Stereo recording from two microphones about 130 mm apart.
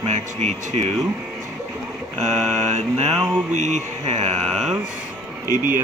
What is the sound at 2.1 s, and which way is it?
Mantra, 60° right (ahead or behind).